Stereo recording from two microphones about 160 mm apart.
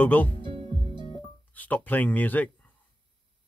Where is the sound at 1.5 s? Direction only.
10° left (ahead or behind).